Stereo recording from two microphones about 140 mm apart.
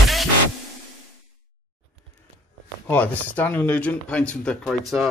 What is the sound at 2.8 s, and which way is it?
Speech, 10° left (ahead or behind).